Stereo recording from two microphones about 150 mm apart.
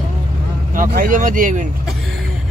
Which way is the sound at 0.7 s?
65° right (ahead or behind).